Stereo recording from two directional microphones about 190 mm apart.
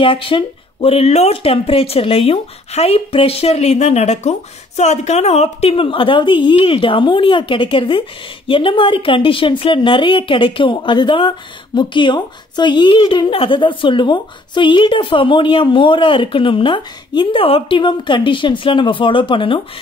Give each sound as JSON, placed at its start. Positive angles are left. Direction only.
{"t": 0.0, "sound": "a woman's voice", "side_deg": 25}